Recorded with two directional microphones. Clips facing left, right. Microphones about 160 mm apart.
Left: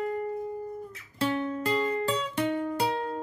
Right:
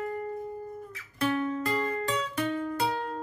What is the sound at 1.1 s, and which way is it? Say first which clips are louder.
Music: even; 25° left (ahead or behind).